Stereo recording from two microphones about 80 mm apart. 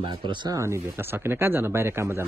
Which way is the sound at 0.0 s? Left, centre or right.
Right.